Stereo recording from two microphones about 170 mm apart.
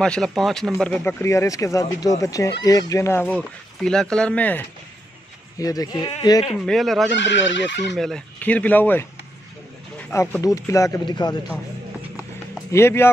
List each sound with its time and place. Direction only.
0.0 s speech: 5° left (ahead or behind)
5.6 s speech: 20° left (ahead or behind)
6.6 s speech: centre (ahead or behind)
7.1 s speech: 90° left
8.0 s speech: 5° left (ahead or behind); by 11.3 s 25° left (ahead or behind)
12.7 s speech: 15° left (ahead or behind)